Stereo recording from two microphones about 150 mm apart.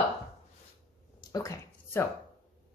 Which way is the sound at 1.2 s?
25° left (ahead or behind).